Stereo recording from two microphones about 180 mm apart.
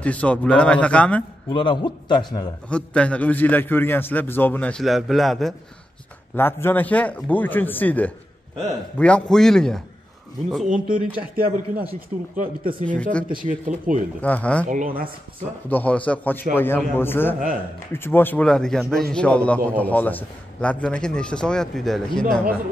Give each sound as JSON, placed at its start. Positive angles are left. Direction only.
{"t": 0.0, "sound": "a man's voice", "side_deg": 5}
{"t": 1.5, "sound": "a man's voice", "side_deg": 25}
{"t": 2.7, "sound": "a man's voice", "side_deg": 5}
{"t": 6.3, "sound": "a man's voice", "side_deg": 10}
{"t": 10.9, "sound": "speech", "side_deg": -55}
{"t": 14.2, "sound": "a man's voice", "side_deg": 10}
{"t": 14.7, "sound": "speech", "side_deg": -45}
{"t": 15.7, "sound": "a man's voice", "side_deg": 10}